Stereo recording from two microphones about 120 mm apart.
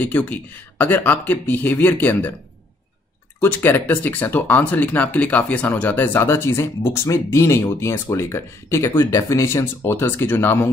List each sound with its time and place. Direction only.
0.0 s speech: 15° left (ahead or behind)
3.3 s speech: 15° left (ahead or behind)